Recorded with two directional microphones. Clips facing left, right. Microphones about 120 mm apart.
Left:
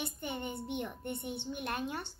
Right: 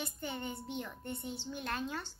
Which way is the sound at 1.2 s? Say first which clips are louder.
Left 2 dB; 60° left (ahead or behind).